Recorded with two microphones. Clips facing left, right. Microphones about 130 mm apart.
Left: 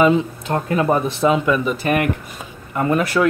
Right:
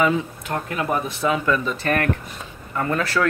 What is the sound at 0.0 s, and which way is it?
Speech, 25° left (ahead or behind).